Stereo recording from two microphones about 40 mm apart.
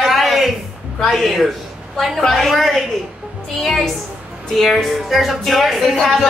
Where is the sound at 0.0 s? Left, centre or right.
Centre.